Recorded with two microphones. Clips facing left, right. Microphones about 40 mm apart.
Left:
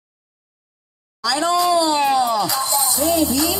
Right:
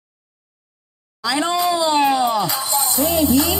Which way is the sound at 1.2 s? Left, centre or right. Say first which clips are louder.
Left 1 dB; centre.